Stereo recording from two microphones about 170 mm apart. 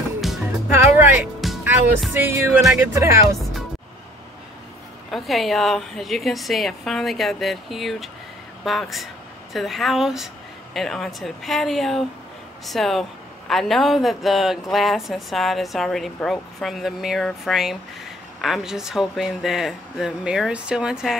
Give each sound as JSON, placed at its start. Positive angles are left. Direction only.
{"t": 0.7, "sound": "speech", "side_deg": -10}
{"t": 1.4, "sound": "music", "side_deg": 0}
{"t": 2.1, "sound": "music", "side_deg": -15}
{"t": 5.1, "sound": "speech", "side_deg": 0}